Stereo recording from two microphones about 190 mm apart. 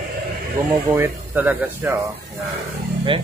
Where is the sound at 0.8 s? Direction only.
15° right (ahead or behind).